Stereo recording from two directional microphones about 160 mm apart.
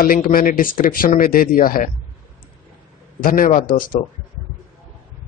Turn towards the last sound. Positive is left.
turn(degrees=60)  # may be behind; listen again after turning